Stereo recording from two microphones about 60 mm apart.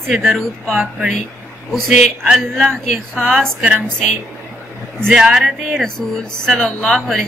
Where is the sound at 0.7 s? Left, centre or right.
Right.